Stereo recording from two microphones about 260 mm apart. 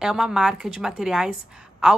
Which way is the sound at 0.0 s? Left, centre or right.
Centre.